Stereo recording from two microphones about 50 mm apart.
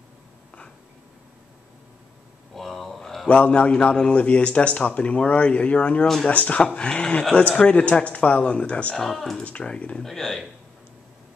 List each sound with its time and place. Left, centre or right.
2.5 s a sound: centre
3.3 s a man's voice: left
8.9 s speech: centre
9.4 s a man's voice: left
10.0 s speech: centre